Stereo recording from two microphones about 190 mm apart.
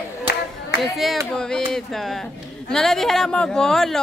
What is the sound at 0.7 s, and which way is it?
Speech, centre (ahead or behind).